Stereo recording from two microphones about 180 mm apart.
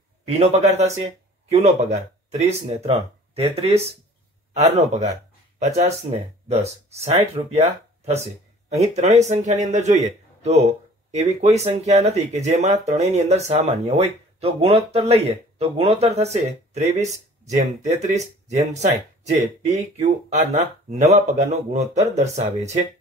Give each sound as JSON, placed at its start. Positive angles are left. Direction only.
{"t": 0.3, "sound": "speech", "side_deg": -35}
{"t": 20.5, "sound": "speech", "side_deg": -40}